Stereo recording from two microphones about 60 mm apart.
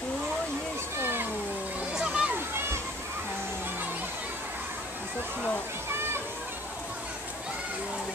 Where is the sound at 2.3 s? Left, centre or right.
Right.